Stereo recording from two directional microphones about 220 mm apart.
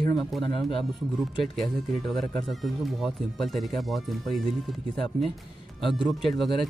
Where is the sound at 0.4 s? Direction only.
20° left (ahead or behind).